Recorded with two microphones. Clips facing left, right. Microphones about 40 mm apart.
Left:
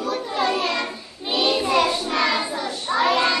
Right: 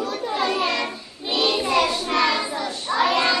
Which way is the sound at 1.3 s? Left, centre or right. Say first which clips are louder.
Left 1 dB; centre.